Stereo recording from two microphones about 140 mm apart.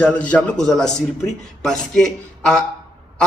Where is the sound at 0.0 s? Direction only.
10° left (ahead or behind).